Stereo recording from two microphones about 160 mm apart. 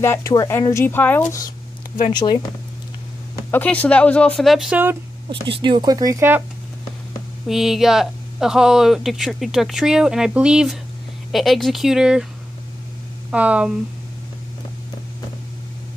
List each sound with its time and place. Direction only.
0.0 s speech: 15° left (ahead or behind)
2.1 s speech: 25° left (ahead or behind)
3.5 s speech: 10° left (ahead or behind); by 4.9 s 10° right (ahead or behind)
5.6 s speech: 30° right (ahead or behind)
7.4 s speech: centre (ahead or behind)
13.3 s speech: 10° right (ahead or behind)